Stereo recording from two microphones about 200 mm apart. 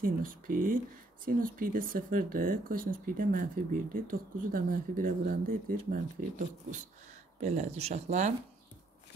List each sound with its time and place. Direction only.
0.0 s speech: 45° right (ahead or behind)
7.3 s speech: 35° right (ahead or behind)